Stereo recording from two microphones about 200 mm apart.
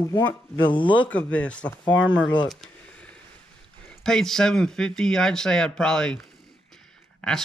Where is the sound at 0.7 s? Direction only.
25° left (ahead or behind).